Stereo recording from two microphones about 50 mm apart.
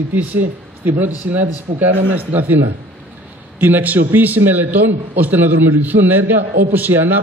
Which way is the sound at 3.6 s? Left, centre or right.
Right.